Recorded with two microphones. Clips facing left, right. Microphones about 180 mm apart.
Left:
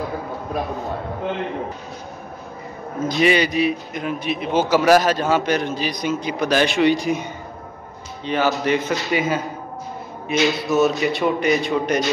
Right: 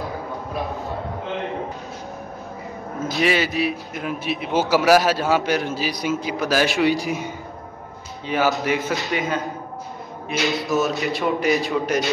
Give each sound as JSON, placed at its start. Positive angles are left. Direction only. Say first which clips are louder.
{"t": 3.1, "sound": "a man's voice", "louder": "left 3 dB", "side_deg": 0}